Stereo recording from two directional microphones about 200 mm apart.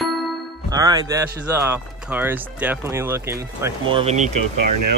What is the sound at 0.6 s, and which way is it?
Speech, 20° right (ahead or behind).